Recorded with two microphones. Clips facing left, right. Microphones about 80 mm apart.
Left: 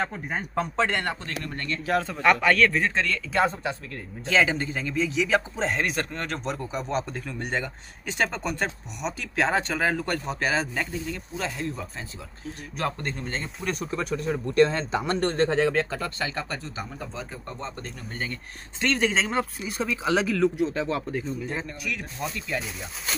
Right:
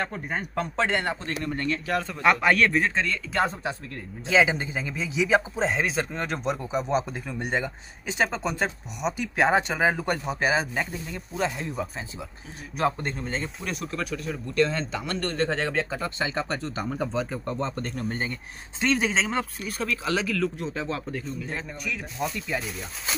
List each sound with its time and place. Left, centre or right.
0.0 s a man's voice: centre
0.8 s a man's voice: centre
2.2 s speech: centre
4.3 s a man's voice: centre
9.4 s speech: centre
13.0 s a man's voice: centre
13.9 s speech: left
15.5 s a man's voice: centre
16.0 s speech: centre
18.8 s a man's voice: centre
20.6 s a man's voice: centre
22.5 s speech: centre